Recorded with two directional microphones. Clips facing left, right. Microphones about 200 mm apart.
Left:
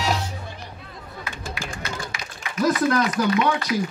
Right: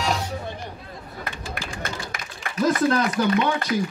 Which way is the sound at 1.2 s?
50° right (ahead or behind).